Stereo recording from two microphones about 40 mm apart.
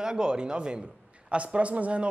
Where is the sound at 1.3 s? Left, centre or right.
Right.